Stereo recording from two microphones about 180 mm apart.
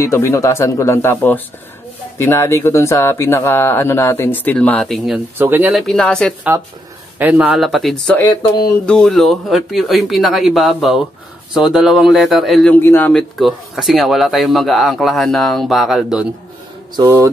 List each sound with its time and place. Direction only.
0.0 s speech: 15° left (ahead or behind)
7.2 s speech: 10° right (ahead or behind)
8.2 s speech: 20° left (ahead or behind)
8.8 s speech: 5° left (ahead or behind)
12.7 s speech: 10° left (ahead or behind)
16.9 s speech: 15° right (ahead or behind)